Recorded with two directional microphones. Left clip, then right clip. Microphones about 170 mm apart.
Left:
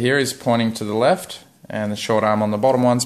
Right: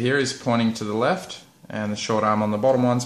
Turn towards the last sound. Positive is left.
turn(degrees=45)  # may be behind; listen again after turning